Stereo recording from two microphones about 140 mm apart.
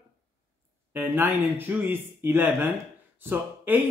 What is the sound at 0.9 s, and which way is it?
Speech, 15° right (ahead or behind).